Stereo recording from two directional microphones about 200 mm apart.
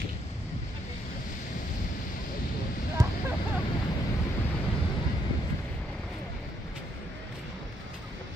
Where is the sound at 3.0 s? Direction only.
20° right (ahead or behind).